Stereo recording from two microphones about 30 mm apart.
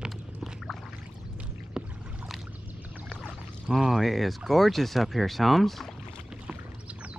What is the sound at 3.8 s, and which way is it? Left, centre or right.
Speech, centre.